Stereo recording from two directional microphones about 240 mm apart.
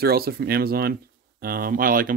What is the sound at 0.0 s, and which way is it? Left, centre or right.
Speech, right.